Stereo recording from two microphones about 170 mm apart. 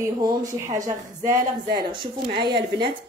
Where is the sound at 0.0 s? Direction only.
25° right (ahead or behind).